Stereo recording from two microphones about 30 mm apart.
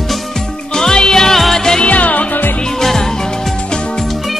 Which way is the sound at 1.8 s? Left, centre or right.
Left.